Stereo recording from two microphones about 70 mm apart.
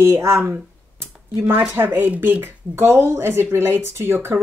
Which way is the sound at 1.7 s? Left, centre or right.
Right.